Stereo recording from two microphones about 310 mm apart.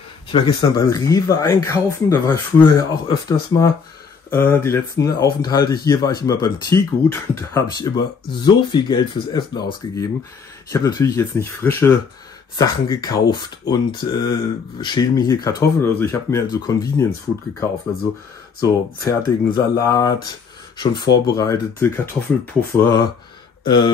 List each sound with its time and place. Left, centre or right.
0.3 s speech: centre
18.6 s speech: centre
21.0 s speech: left
21.4 s speech: centre